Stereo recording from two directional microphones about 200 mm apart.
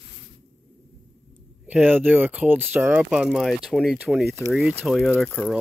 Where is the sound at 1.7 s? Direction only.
10° right (ahead or behind).